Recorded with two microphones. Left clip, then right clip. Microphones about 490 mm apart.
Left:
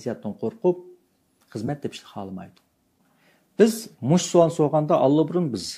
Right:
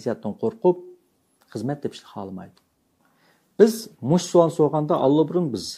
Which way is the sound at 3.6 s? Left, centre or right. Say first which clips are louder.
Right 2 dB; left.